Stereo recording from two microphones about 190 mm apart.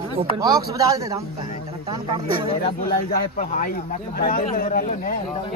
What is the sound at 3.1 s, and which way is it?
A man's voice, 45° left (ahead or behind).